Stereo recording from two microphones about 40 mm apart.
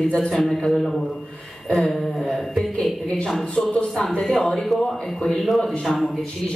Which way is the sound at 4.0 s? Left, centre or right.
Centre.